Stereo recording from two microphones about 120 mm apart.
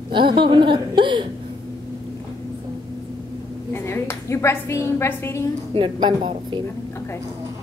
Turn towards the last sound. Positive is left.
turn(degrees=-40)  # may be behind; listen again after turning